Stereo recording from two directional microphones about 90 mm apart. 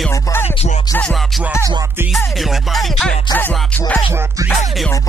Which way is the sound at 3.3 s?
20° left (ahead or behind).